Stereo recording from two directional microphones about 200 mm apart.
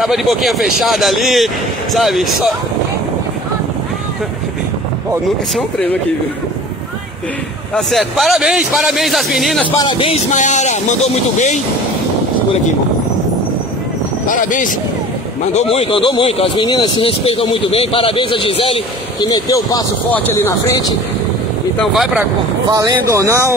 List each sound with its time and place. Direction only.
0.0 s speech: centre (ahead or behind)
7.7 s speech: centre (ahead or behind)
9.7 s speech: 25° left (ahead or behind)
14.2 s speech: 40° left (ahead or behind)
15.5 s speech: 30° left (ahead or behind)
21.7 s speech: centre (ahead or behind)
22.7 s speech: 15° right (ahead or behind)